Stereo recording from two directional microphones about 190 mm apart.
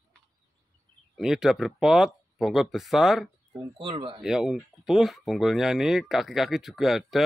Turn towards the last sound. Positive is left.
turn(degrees=0)  # may be behind; listen again after turning